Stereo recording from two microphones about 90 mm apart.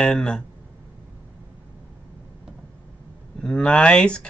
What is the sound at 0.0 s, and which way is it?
Speech, 10° left (ahead or behind).